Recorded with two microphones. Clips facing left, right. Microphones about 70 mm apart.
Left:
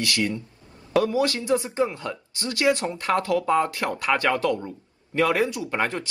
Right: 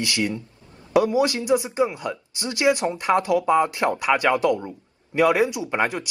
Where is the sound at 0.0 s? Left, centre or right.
Right.